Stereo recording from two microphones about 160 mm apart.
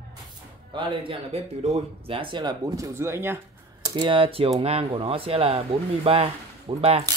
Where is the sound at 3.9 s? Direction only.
30° right (ahead or behind).